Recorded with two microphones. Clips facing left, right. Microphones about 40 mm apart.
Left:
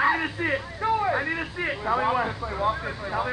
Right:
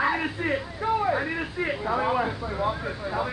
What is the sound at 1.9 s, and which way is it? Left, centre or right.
Speech, centre.